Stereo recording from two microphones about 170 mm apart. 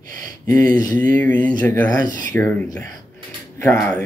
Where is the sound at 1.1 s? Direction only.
10° left (ahead or behind).